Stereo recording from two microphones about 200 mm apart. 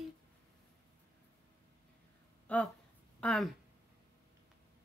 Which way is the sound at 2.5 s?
5° left (ahead or behind).